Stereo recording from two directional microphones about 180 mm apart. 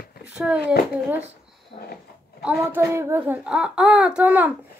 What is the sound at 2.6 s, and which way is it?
Speech, 15° right (ahead or behind).